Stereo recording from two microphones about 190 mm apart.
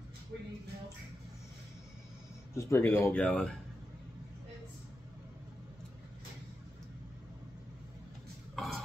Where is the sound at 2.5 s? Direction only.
15° left (ahead or behind).